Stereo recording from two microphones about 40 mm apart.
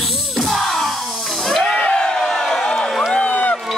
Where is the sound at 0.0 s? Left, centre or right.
Centre.